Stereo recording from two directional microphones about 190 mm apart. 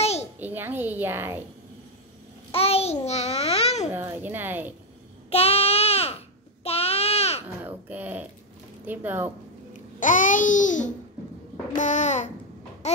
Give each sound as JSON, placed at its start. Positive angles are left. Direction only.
{"t": 0.0, "sound": "a sound", "side_deg": 35}
{"t": 0.4, "sound": "a woman's voice", "side_deg": -10}
{"t": 2.5, "sound": "a child's voice", "side_deg": 30}
{"t": 3.9, "sound": "a woman's voice", "side_deg": -10}
{"t": 5.3, "sound": "a sound", "side_deg": 30}
{"t": 7.6, "sound": "a woman's voice", "side_deg": -10}
{"t": 9.9, "sound": "babbling", "side_deg": 45}
{"t": 11.7, "sound": "a child's voice", "side_deg": 40}
{"t": 12.8, "sound": "a sound", "side_deg": 35}